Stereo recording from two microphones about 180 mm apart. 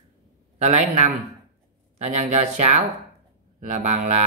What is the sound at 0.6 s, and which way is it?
Speech, 40° right (ahead or behind).